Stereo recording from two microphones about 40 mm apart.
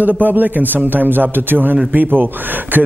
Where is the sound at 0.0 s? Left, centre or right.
Right.